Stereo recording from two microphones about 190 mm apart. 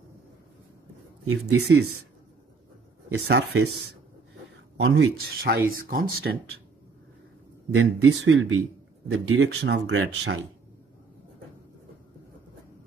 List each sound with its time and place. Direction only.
1.2 s speech: 75° right (ahead or behind)
3.3 s speech: 60° right (ahead or behind)
4.7 s speech: 65° right (ahead or behind)
7.7 s speech: 90° right
9.3 s speech: 80° right